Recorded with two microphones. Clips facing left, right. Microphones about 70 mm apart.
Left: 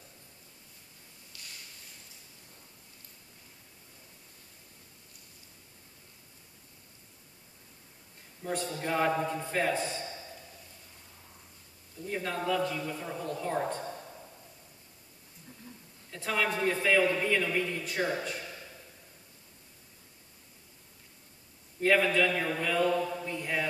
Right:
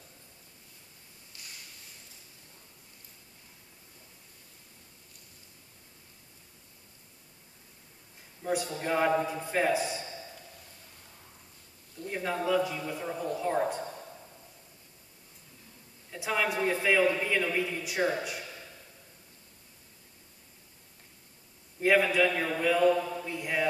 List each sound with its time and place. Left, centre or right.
1.3 s a sound: right
8.4 s a man's voice: centre
12.1 s a man's voice: centre
16.1 s a man's voice: centre
21.8 s a man's voice: centre